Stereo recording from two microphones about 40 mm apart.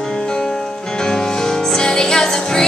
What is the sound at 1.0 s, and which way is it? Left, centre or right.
Music, centre.